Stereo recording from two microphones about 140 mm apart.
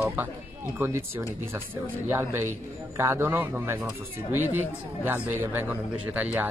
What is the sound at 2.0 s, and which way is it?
Speech, 15° right (ahead or behind).